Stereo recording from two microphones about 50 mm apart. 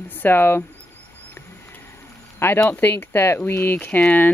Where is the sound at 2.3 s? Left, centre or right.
Left.